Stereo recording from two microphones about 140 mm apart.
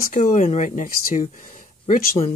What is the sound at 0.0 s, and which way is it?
Speech, 60° left (ahead or behind).